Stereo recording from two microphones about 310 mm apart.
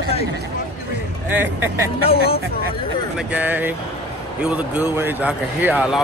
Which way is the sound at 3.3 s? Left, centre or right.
Centre.